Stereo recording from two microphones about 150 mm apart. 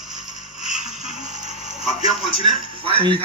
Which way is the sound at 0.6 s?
5° right (ahead or behind).